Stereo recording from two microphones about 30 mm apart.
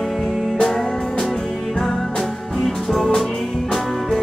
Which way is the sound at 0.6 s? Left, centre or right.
Centre.